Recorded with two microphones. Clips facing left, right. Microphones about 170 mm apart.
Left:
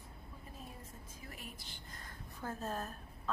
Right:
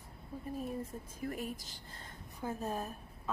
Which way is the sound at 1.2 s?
45° right (ahead or behind).